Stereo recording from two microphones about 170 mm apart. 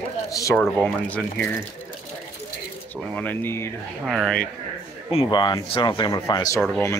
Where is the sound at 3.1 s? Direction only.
10° left (ahead or behind).